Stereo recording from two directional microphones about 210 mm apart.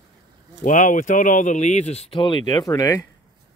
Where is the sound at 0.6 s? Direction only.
35° left (ahead or behind); by 3.0 s 15° left (ahead or behind).